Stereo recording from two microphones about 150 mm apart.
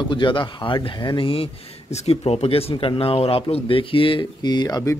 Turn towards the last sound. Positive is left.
turn(degrees=25)  # may be behind; listen again after turning